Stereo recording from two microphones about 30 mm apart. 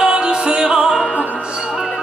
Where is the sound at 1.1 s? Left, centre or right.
Left.